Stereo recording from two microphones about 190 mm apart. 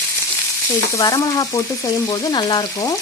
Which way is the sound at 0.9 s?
15° left (ahead or behind).